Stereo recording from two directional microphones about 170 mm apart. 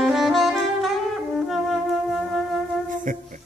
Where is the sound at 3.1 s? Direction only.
50° right (ahead or behind).